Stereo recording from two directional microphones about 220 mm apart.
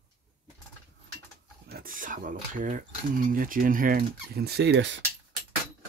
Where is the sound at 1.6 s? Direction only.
40° right (ahead or behind).